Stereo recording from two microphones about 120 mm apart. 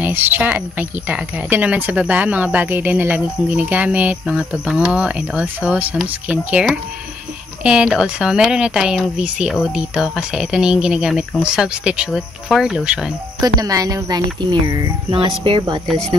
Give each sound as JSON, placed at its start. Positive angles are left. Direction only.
{"t": 0.0, "sound": "speech", "side_deg": -15}
{"t": 13.4, "sound": "speech", "side_deg": -30}
{"t": 14.5, "sound": "speech", "side_deg": -40}